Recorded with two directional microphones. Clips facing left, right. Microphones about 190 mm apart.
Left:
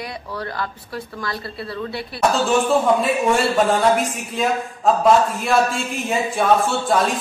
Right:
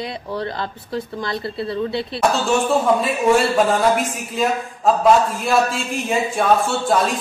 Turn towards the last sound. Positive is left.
turn(degrees=0)  # may be behind; listen again after turning